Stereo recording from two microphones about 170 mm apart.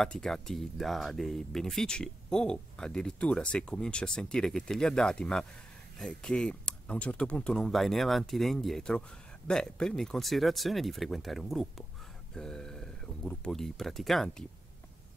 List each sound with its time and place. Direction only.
0.0 s speech: 5° left (ahead or behind)